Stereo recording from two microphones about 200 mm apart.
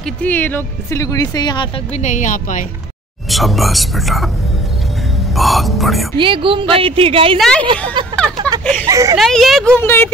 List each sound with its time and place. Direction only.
0.2 s speech: 10° left (ahead or behind)
2.0 s speech: 40° left (ahead or behind)
3.3 s speech: centre (ahead or behind)
5.3 s speech: centre (ahead or behind)
6.1 s a woman's voice: 25° right (ahead or behind)
7.3 s speech: centre (ahead or behind)
8.5 s a sound: 5° left (ahead or behind)
8.8 s speech: 15° right (ahead or behind)
9.2 s speech: centre (ahead or behind)